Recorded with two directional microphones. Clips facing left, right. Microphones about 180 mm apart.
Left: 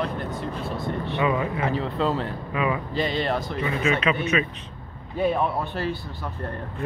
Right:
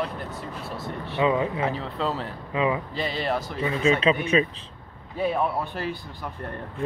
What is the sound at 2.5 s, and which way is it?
Speech, 25° right (ahead or behind).